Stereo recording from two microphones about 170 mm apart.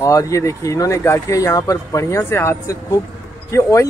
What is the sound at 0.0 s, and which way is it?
Speech, 20° left (ahead or behind).